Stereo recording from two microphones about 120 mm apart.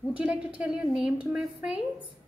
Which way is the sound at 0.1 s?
10° right (ahead or behind).